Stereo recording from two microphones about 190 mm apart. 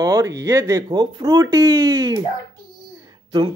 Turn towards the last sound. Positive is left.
turn(degrees=-25)  # may be behind; listen again after turning